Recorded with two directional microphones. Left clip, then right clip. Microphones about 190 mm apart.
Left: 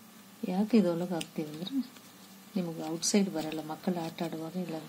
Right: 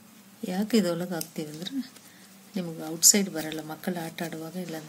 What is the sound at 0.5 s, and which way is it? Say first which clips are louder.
Speech: right 2 dB; 25° right (ahead or behind).